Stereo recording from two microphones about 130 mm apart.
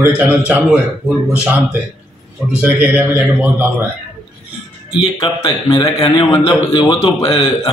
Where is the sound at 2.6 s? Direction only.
15° right (ahead or behind).